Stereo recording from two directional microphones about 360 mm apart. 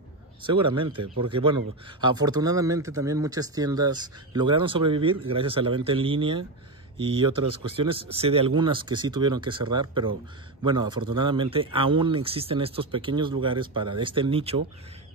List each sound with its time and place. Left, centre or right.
0.7 s a man's voice: centre
7.4 s speech: right
7.7 s a man's voice: centre